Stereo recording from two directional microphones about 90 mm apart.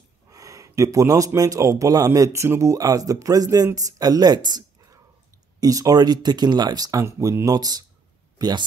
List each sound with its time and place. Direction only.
0.3 s speech: 40° right (ahead or behind)